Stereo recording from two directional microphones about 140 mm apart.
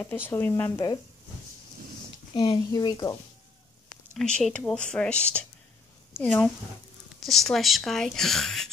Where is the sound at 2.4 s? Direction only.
30° left (ahead or behind).